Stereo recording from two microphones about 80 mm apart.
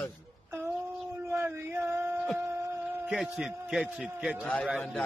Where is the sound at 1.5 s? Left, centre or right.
Right.